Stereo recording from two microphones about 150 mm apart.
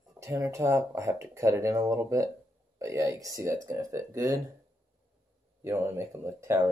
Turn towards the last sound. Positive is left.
turn(degrees=-20)  # may be behind; listen again after turning